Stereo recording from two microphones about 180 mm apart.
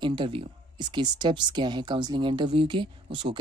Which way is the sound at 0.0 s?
25° right (ahead or behind).